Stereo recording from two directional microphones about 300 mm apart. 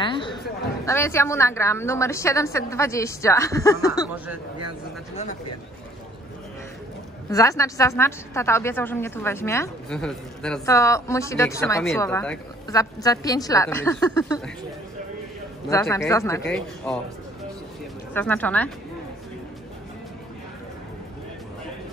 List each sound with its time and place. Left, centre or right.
0.0 s a sound: centre
0.8 s a woman's voice: centre
7.2 s a woman's voice: centre
15.7 s a woman's voice: centre
18.1 s speech: centre